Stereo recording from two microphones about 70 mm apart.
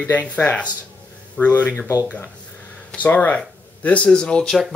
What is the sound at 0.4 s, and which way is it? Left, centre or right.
Speech, left.